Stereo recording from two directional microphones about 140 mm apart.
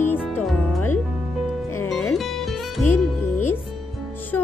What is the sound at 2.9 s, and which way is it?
Music, 15° left (ahead or behind).